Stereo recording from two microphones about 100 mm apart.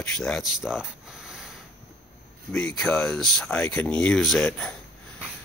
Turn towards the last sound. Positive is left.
turn(degrees=10)  # may be behind; listen again after turning